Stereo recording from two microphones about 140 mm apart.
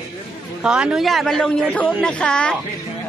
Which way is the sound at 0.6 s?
5° right (ahead or behind).